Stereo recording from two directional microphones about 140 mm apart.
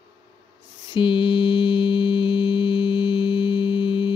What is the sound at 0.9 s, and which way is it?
Mantra, 35° left (ahead or behind).